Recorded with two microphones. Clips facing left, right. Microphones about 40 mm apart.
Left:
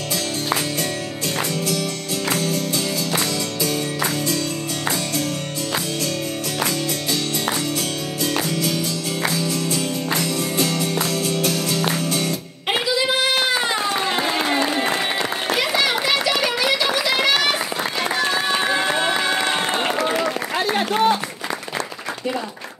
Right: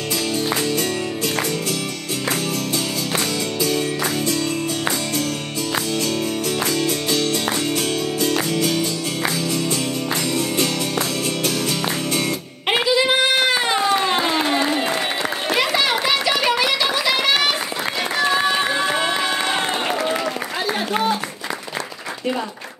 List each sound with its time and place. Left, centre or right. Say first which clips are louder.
8.2 s music: even; right
10.6 s music: even; right
15.6 s children playing: right 1 dB; centre
16.3 s a sound: right 2 dB; right
18.2 s music: right 4 dB; centre
18.8 s crowd: even; centre